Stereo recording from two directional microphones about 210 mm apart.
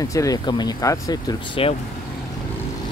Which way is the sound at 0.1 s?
15° left (ahead or behind).